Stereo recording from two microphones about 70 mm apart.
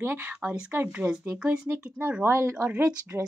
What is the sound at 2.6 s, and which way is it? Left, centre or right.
Speech, centre.